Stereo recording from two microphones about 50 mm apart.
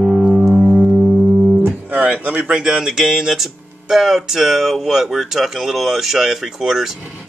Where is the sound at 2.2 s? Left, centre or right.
Right.